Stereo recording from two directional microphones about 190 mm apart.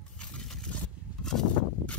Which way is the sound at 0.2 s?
5° left (ahead or behind).